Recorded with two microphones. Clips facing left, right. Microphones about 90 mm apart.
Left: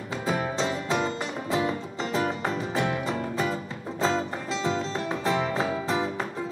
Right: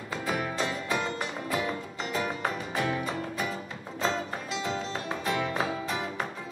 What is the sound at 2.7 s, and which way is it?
Music, 30° left (ahead or behind).